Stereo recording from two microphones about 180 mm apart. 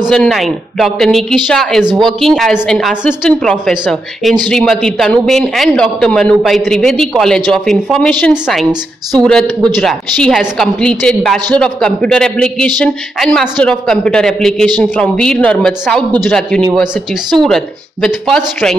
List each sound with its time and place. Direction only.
0.0 s a man's voice: centre (ahead or behind)